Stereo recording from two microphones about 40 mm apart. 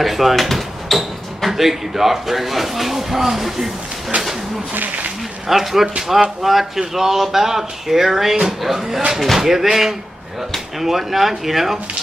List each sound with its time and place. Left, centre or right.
0.0 s speech: centre
4.1 s a sound: right
4.7 s speech: right
5.5 s speech: centre